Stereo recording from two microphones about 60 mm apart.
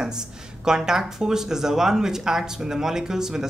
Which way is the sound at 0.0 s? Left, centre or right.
Centre.